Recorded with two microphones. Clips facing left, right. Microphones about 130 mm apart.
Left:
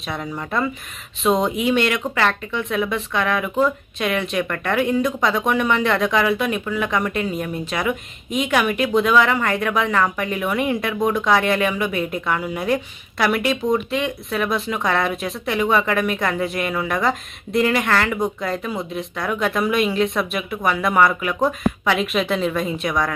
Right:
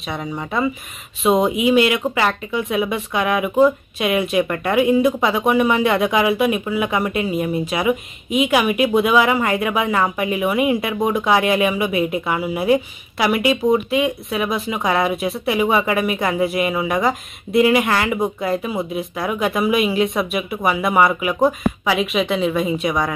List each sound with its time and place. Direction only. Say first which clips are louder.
0.0 s speech: right 2 dB; centre (ahead or behind)